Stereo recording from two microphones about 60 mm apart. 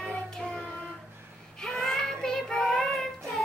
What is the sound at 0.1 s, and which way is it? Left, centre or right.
Music, centre.